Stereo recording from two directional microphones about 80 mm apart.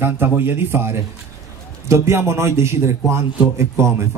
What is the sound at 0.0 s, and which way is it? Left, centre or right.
A man's voice, right.